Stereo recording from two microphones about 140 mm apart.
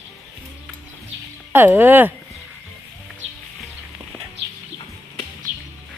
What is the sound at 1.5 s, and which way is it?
Speech, 15° right (ahead or behind).